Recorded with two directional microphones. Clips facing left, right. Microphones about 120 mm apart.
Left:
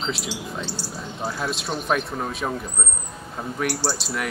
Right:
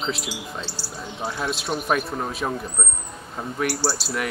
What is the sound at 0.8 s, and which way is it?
Speech, 15° left (ahead or behind).